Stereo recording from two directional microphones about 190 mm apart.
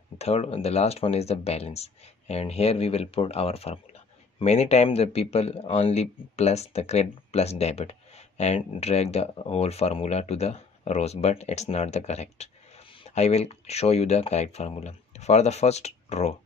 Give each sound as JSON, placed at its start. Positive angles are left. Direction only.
{"t": 0.2, "sound": "speech", "side_deg": 35}